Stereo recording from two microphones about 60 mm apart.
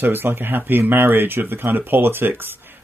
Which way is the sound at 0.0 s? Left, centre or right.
Right.